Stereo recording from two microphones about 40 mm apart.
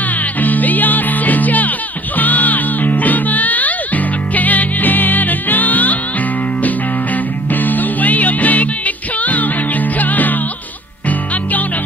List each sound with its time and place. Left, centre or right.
0.4 s music: left
7.5 s music: left